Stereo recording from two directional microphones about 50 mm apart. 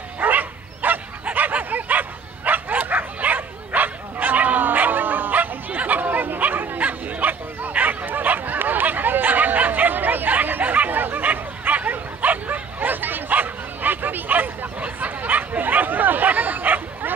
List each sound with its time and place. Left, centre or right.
0.2 s bow-wow: right